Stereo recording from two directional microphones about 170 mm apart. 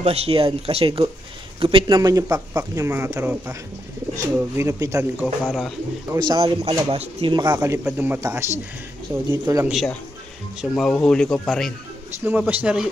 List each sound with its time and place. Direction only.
0.0 s speech: 35° right (ahead or behind); by 5.0 s 20° right (ahead or behind)
5.2 s a man's voice: centre (ahead or behind)
6.1 s speech: 25° right (ahead or behind)
7.3 s speech: 25° right (ahead or behind)
9.7 s a man's voice: centre (ahead or behind)
12.3 s speech: 10° right (ahead or behind)